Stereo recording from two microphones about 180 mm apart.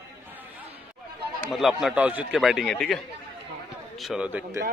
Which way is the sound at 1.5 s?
Centre (ahead or behind).